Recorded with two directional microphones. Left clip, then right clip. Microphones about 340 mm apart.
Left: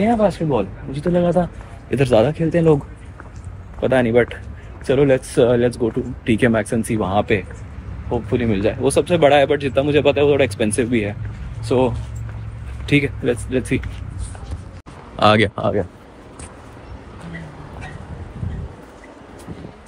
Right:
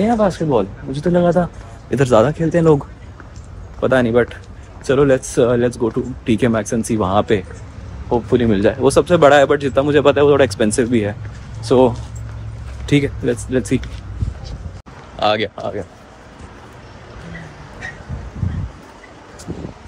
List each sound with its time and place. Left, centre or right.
0.0 s speech: centre
3.8 s speech: centre
12.9 s speech: centre
15.1 s a sound: left